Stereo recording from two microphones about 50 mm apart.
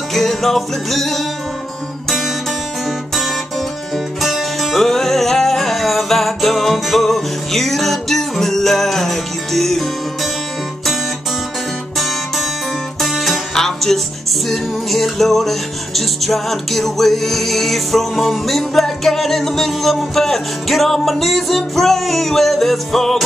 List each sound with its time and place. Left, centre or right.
0.1 s music: centre
4.2 s music: centre
13.0 s music: centre
13.6 s music: centre